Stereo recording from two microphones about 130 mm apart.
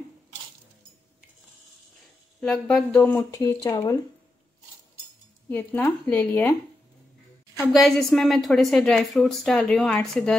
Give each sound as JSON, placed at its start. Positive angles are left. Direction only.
{"t": 2.4, "sound": "a woman's voice", "side_deg": 5}
{"t": 3.0, "sound": "speech", "side_deg": 20}
{"t": 5.5, "sound": "speech", "side_deg": 15}
{"t": 7.7, "sound": "a woman's voice", "side_deg": 0}